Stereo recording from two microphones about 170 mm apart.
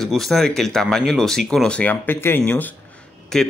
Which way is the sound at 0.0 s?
Centre (ahead or behind).